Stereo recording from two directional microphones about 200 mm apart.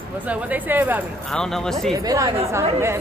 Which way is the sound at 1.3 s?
5° left (ahead or behind).